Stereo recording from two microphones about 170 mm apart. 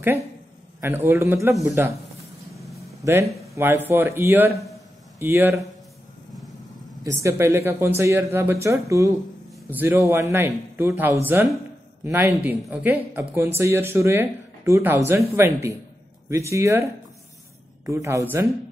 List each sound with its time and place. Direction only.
0.7 s speech: 15° right (ahead or behind)
3.0 s a man's voice: 15° right (ahead or behind)
7.1 s speech: 15° right (ahead or behind)
17.8 s speech: 15° right (ahead or behind)